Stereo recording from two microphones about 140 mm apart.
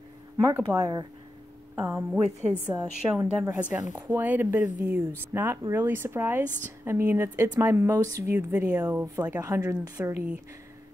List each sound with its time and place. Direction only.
0.5 s speech: 25° right (ahead or behind)
2.6 s a woman's voice: 10° right (ahead or behind)
5.6 s speech: 30° right (ahead or behind)
5.9 s a woman's voice: 15° right (ahead or behind)
8.4 s a woman's voice: 10° right (ahead or behind)
8.9 s speech: 25° right (ahead or behind)